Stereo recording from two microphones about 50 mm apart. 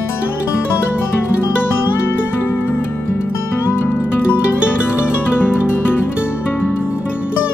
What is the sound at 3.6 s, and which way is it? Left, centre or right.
Music, left.